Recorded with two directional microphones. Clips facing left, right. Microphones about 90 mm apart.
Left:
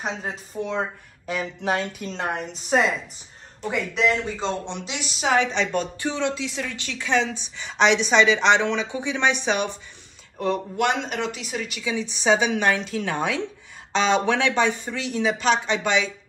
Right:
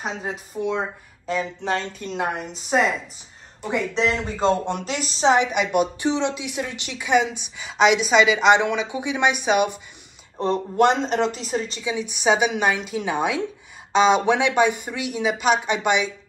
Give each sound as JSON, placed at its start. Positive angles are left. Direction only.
{"t": 0.2, "sound": "speech", "side_deg": -5}
{"t": 3.9, "sound": "speech", "side_deg": -35}
{"t": 5.3, "sound": "a woman's voice", "side_deg": -15}
{"t": 10.3, "sound": "speech", "side_deg": -35}
{"t": 11.8, "sound": "a woman's voice", "side_deg": -15}